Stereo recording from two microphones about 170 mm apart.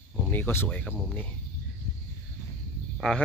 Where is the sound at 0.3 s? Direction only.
10° left (ahead or behind).